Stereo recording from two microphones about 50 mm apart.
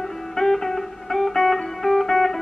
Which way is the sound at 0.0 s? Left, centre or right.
Centre.